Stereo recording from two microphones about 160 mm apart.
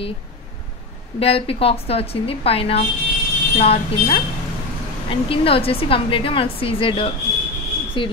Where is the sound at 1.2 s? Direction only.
35° left (ahead or behind).